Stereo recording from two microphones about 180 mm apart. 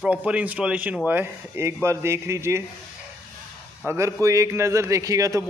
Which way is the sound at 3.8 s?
15° right (ahead or behind).